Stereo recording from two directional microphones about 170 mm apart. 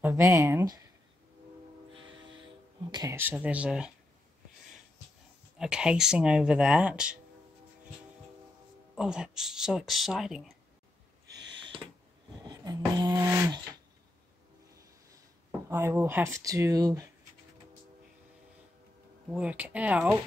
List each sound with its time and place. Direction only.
0.0 s speech: 15° right (ahead or behind)
2.9 s speech: 20° right (ahead or behind)
3.2 s speech: 10° right (ahead or behind)
5.6 s speech: 5° right (ahead or behind)
8.9 s speech: 5° right (ahead or behind)
12.4 s beatboxing: 20° right (ahead or behind)
13.2 s a sound: 10° right (ahead or behind)
15.7 s speech: 15° right (ahead or behind)
19.3 s speech: 10° right (ahead or behind)